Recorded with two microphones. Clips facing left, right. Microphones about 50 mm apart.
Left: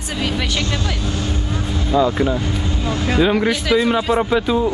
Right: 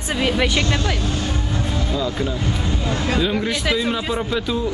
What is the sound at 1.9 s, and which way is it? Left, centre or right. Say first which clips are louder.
Speech: left 10 dB; left.